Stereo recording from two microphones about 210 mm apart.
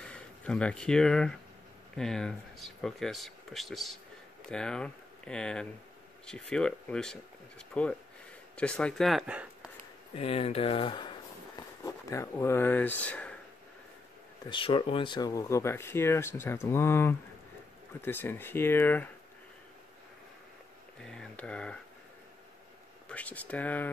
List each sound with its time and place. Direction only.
0.0 s speech: 5° left (ahead or behind)
10.1 s speech: 25° left (ahead or behind); by 13.4 s 5° left (ahead or behind)
14.4 s speech: 25° left (ahead or behind)
21.0 s a sound: centre (ahead or behind)
23.0 s speech: 5° left (ahead or behind)